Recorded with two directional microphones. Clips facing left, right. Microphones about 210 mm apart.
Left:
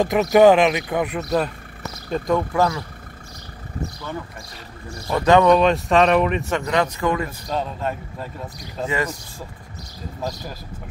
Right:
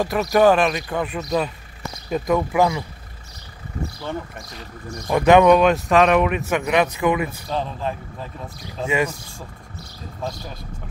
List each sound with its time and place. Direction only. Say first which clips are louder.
0.0 s speech: left 3 dB; 20° left (ahead or behind)
1.2 s speech: left 1 dB; centre (ahead or behind)
4.9 s speech: right 2 dB; 15° right (ahead or behind); by 8.3 s centre (ahead or behind)
8.8 s speech: right 2 dB; 10° right (ahead or behind)